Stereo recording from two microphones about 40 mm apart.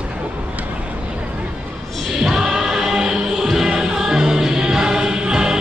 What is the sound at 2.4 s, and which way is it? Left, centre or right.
Music, centre.